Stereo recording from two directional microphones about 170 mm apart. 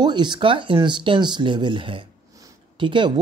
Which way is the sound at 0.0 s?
25° right (ahead or behind).